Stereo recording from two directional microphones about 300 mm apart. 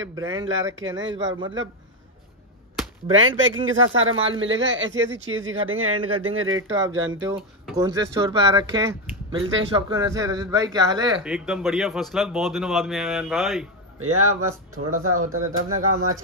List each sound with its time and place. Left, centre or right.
0.0 s speech: centre
0.7 s speech: right
3.1 s speech: right
7.8 s speech: centre
13.9 s speech: right